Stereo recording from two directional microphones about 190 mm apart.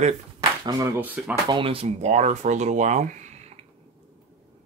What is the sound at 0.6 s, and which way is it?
Speech, 20° right (ahead or behind).